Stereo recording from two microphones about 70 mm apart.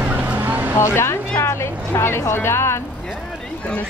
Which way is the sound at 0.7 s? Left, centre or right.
Left.